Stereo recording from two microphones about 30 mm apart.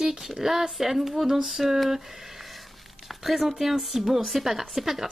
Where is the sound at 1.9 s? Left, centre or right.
Centre.